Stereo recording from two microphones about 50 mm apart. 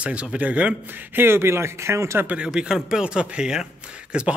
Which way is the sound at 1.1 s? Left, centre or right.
Right.